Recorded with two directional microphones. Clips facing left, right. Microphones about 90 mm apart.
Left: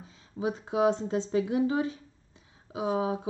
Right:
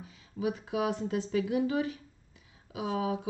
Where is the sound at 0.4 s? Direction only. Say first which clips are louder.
Left 4 dB; 30° left (ahead or behind).